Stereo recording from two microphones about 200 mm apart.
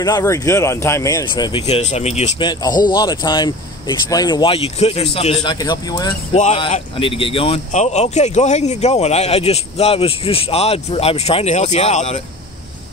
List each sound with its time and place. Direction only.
0.0 s speech: 15° left (ahead or behind)
6.3 s speech: 35° left (ahead or behind)